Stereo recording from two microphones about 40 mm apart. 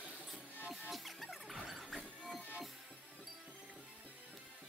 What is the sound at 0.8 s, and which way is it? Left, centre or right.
Music, centre.